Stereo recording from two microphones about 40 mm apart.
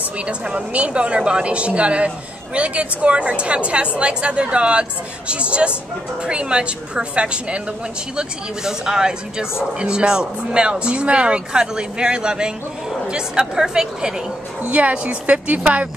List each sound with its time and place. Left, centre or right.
0.3 s a woman's voice: right
8.2 s a woman's voice: centre
14.6 s a woman's voice: right